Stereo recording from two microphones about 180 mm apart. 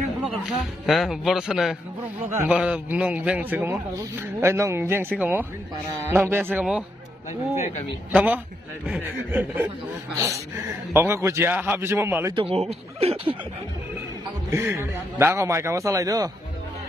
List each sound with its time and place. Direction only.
0.5 s a man's voice: centre (ahead or behind)
7.5 s a man's voice: 40° left (ahead or behind)
8.1 s a man's voice: 10° right (ahead or behind)
12.4 s speech: 35° right (ahead or behind)
14.5 s a man's voice: 15° right (ahead or behind)